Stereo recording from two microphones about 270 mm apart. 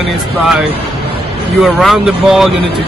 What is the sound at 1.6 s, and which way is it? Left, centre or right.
Speech, centre.